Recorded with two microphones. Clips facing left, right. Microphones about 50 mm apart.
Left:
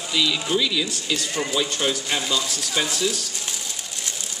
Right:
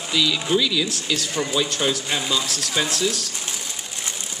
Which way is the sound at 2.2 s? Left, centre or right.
Centre.